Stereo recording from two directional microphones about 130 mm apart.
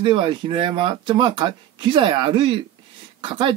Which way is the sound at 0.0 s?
40° right (ahead or behind).